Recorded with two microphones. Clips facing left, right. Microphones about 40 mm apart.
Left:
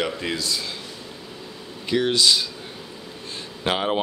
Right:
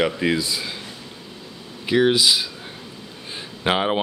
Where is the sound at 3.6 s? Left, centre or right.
Centre.